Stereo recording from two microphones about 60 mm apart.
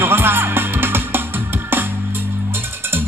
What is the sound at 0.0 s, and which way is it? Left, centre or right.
Music, right.